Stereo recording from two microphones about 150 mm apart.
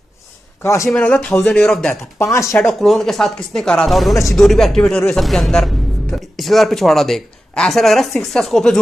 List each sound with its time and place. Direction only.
0.6 s speech: 20° left (ahead or behind)
2.1 s speech: 20° left (ahead or behind)
2.6 s speech: centre (ahead or behind)